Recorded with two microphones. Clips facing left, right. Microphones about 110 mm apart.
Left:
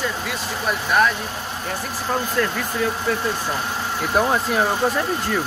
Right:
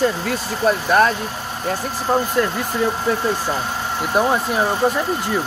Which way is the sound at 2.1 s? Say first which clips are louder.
Right 4 dB; 20° right (ahead or behind).